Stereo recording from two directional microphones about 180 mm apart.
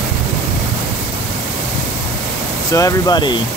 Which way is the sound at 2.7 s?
20° left (ahead or behind).